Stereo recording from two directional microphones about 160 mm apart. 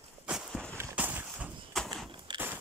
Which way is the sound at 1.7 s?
Centre (ahead or behind).